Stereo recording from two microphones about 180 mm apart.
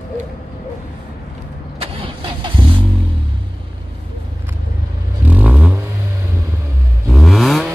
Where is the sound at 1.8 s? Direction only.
30° right (ahead or behind).